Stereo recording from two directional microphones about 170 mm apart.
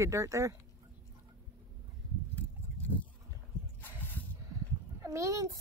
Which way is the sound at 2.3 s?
10° left (ahead or behind).